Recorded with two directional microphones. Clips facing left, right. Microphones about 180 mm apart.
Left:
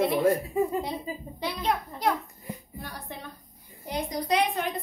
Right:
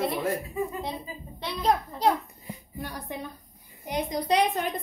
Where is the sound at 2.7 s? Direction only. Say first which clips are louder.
Right 4 dB; 15° right (ahead or behind); by 4.6 s 30° right (ahead or behind).